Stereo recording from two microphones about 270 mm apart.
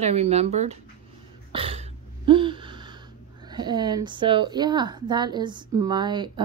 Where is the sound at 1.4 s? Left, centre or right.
Right.